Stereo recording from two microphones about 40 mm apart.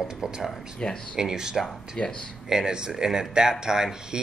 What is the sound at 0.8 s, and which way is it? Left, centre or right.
Speech, left.